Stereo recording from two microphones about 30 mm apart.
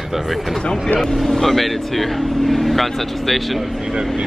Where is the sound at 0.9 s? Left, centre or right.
Centre.